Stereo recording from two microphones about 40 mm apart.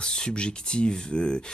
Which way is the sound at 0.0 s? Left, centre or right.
Left.